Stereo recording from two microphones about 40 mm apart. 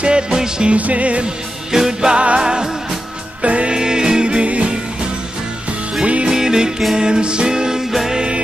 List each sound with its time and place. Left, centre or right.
0.0 s music: centre
0.7 s music: right
1.2 s music: centre
3.4 s music: right
6.2 s music: centre
7.9 s music: centre